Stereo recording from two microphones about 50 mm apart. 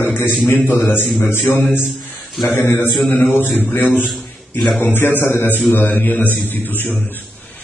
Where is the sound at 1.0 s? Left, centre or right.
Centre.